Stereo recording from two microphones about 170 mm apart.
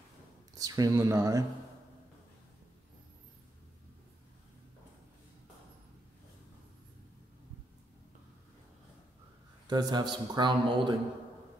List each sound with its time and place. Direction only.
0.6 s a man's voice: 20° right (ahead or behind)
9.7 s a man's voice: 25° right (ahead or behind)